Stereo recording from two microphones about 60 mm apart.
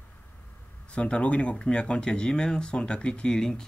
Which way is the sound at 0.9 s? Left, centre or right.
Centre.